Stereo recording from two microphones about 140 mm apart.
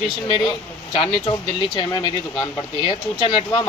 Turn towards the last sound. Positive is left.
turn(degrees=30)  # may be behind; listen again after turning